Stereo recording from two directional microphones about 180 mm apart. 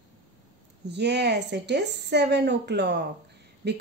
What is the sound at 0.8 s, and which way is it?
A woman's voice, 70° right (ahead or behind).